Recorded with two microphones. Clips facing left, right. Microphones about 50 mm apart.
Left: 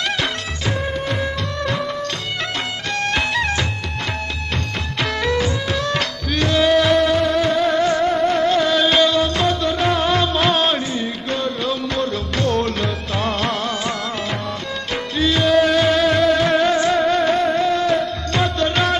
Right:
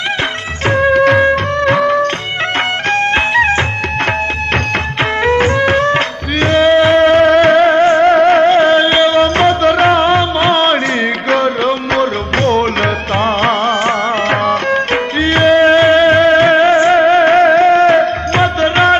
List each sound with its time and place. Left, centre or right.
0.7 s music: right
1.3 s music: right
2.9 s music: right
5.2 s music: right
8.1 s music: right
9.2 s music: right
11.2 s music: right